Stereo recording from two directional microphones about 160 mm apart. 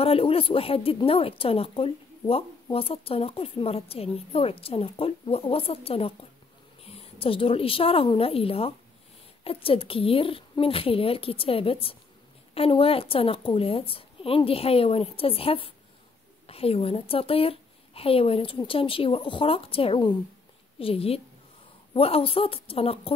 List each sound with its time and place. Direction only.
0.0 s a woman's voice: 35° left (ahead or behind)